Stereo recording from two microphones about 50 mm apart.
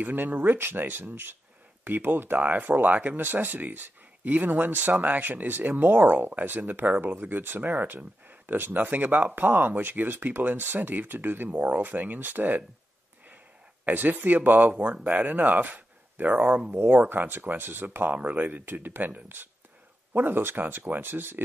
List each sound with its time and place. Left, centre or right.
0.0 s speech: right
13.8 s speech: right